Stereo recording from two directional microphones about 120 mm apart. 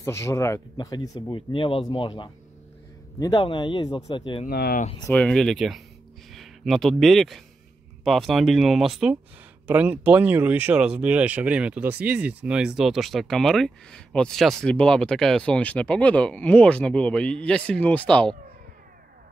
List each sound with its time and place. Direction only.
0.0 s speech: 25° left (ahead or behind)
0.7 s speech: 35° left (ahead or behind)
1.3 s speech: 45° left (ahead or behind)
3.2 s speech: 35° left (ahead or behind)
3.4 s speech: 45° left (ahead or behind)
5.0 s speech: 10° left (ahead or behind)